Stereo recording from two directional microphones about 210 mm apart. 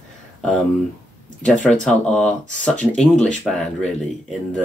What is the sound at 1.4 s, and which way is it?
Speech, 5° left (ahead or behind).